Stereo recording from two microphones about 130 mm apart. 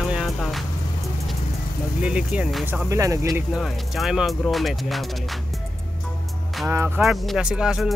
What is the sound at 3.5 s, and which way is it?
Speech, centre (ahead or behind).